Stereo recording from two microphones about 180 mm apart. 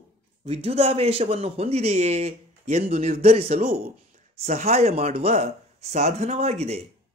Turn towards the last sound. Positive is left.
turn(degrees=-35)  # may be behind; listen again after turning